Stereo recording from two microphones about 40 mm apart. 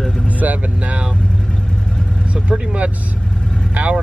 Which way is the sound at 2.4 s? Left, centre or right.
Right.